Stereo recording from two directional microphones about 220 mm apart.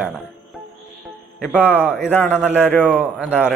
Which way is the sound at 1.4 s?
5° left (ahead or behind).